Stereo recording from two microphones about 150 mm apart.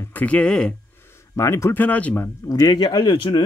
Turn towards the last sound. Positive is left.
turn(degrees=35)  # may be behind; listen again after turning